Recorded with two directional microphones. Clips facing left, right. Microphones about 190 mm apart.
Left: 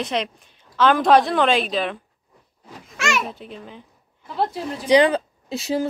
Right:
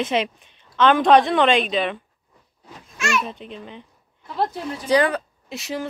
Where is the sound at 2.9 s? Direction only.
85° left.